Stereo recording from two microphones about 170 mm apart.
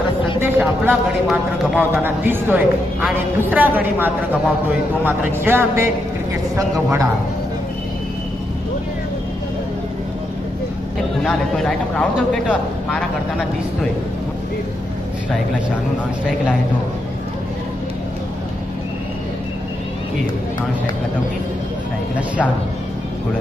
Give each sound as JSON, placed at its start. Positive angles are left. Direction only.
{"t": 0.4, "sound": "a man's voice", "side_deg": -10}
{"t": 11.2, "sound": "speech", "side_deg": 5}